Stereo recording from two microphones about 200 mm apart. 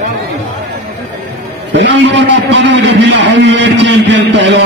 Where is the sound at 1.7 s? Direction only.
60° right (ahead or behind).